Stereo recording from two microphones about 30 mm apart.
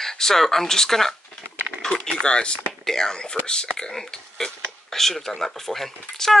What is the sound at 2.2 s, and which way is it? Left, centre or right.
Speech, left.